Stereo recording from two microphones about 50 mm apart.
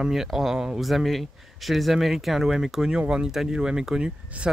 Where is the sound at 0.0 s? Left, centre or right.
Centre.